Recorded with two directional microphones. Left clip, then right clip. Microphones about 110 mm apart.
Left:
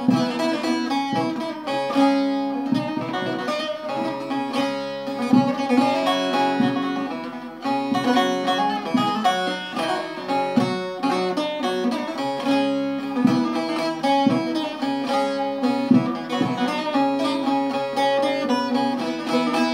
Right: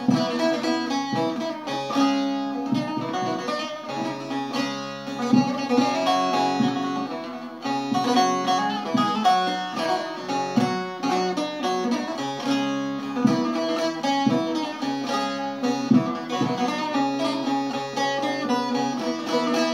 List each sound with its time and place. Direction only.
0.1 s music: 25° left (ahead or behind)
5.3 s music: 30° left (ahead or behind)
7.7 s music: 30° left (ahead or behind)